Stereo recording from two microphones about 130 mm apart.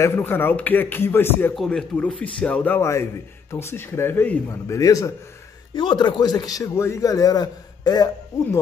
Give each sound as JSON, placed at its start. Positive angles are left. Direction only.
{"t": 0.0, "sound": "a man's voice", "side_deg": 15}
{"t": 1.5, "sound": "a man's voice", "side_deg": 5}
{"t": 5.8, "sound": "speech", "side_deg": 35}